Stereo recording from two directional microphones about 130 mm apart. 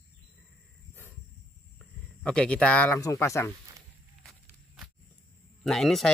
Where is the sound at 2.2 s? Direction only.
5° left (ahead or behind).